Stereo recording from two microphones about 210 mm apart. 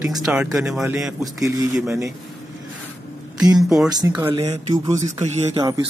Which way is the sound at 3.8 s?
10° right (ahead or behind).